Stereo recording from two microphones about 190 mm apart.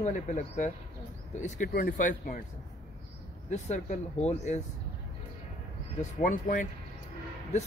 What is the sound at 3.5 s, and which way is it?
Speech, 40° left (ahead or behind).